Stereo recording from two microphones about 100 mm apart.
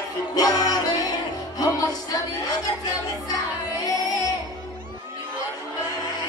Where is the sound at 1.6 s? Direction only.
40° left (ahead or behind).